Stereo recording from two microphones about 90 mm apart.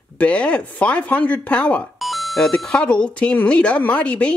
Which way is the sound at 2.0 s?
Centre (ahead or behind).